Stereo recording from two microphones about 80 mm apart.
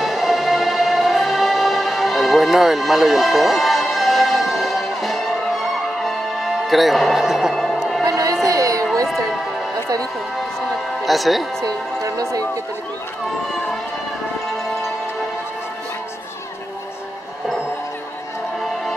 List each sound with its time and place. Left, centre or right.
0.0 s music: centre
8.0 s music: right
8.5 s a sound: right
11.1 s speech: centre
11.6 s speech: right